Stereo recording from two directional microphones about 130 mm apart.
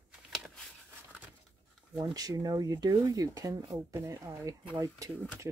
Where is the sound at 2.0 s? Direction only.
30° right (ahead or behind).